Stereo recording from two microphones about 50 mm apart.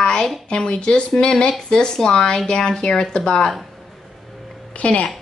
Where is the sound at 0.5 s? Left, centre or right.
Left.